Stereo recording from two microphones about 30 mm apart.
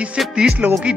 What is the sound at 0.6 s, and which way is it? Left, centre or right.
Speech, right.